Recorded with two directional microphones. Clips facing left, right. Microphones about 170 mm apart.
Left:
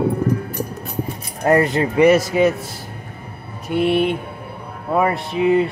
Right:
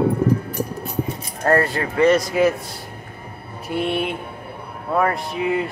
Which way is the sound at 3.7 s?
Centre (ahead or behind).